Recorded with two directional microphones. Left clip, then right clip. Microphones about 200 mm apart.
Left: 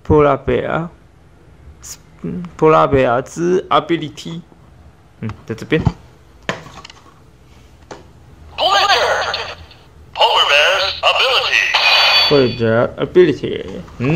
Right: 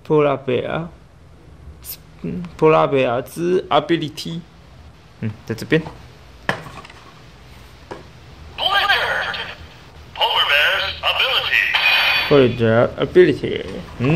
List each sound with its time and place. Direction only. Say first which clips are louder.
0.0 s speech: left 4 dB; 15° left (ahead or behind)
3.6 s speech: left 2 dB; 5° left (ahead or behind)
8.5 s a sound: left 4 dB; 40° left (ahead or behind)
12.4 s speech: even; 5° left (ahead or behind)